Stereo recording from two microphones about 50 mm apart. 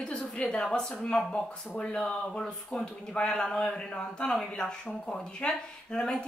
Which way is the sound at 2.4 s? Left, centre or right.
Centre.